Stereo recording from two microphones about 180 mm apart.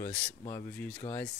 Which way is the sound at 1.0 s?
30° left (ahead or behind).